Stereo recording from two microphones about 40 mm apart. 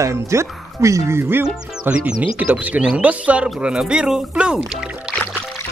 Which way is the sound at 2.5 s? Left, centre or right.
Right.